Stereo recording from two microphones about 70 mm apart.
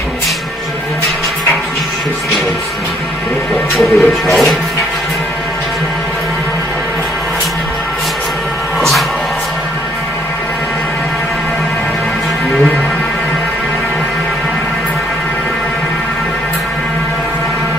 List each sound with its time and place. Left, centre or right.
3.7 s music: centre